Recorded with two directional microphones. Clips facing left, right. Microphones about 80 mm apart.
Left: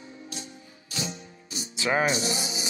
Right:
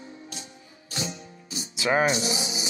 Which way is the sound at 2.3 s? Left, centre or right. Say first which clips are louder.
Right 1 dB; left.